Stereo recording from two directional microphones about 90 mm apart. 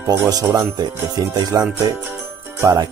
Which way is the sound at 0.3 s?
40° right (ahead or behind).